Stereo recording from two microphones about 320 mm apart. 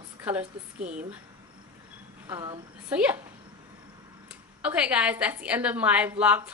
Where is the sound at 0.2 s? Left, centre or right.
Centre.